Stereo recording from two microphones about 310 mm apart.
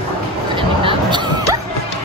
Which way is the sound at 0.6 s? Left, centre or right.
Centre.